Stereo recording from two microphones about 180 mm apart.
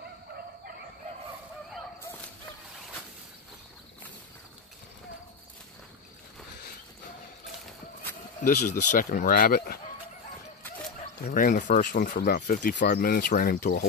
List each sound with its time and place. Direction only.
8.5 s speech: 50° left (ahead or behind)
11.2 s speech: 50° left (ahead or behind)